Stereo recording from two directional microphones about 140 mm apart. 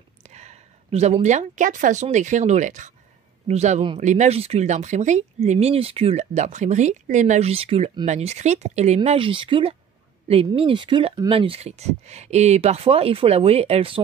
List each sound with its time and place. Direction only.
0.2 s speech: 55° right (ahead or behind)